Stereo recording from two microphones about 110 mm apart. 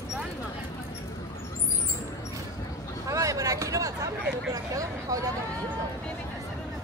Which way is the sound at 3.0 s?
30° right (ahead or behind).